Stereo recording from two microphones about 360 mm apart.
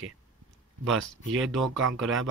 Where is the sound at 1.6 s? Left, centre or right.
Right.